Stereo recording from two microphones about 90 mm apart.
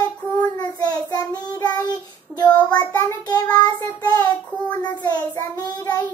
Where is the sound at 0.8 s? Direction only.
50° left (ahead or behind).